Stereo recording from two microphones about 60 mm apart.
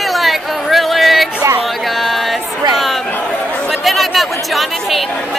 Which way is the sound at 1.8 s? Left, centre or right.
Centre.